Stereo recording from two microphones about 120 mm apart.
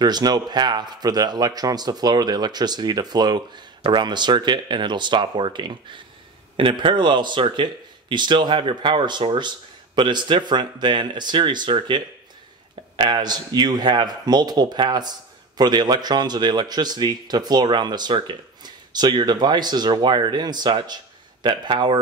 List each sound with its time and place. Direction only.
0.0 s a man's voice: 35° right (ahead or behind)